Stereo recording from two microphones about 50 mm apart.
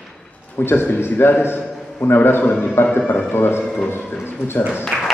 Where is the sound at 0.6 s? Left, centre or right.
Left.